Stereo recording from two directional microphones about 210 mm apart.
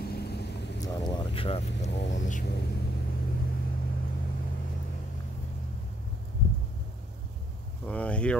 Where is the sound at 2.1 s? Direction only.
35° left (ahead or behind).